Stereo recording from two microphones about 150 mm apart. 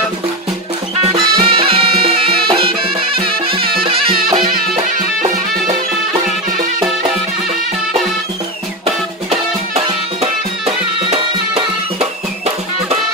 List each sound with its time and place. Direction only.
1.1 s music: 35° right (ahead or behind)